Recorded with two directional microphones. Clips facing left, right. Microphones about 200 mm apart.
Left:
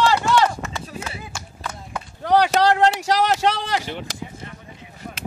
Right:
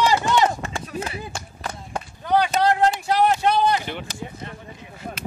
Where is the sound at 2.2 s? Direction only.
85° left.